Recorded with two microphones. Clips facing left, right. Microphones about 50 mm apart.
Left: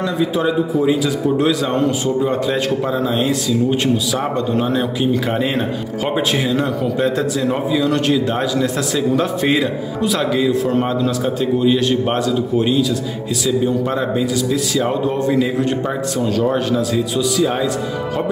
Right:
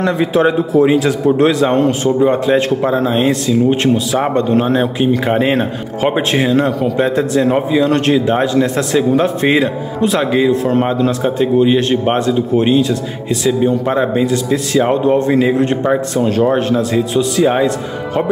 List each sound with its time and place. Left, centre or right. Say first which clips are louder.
0.0 s a man's voice: right 5 dB; right
2.1 s a man's voice: right 6 dB; right
14.3 s a man's voice: right 4 dB; right